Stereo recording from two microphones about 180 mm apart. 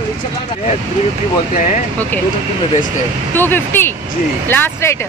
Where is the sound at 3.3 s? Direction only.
10° left (ahead or behind).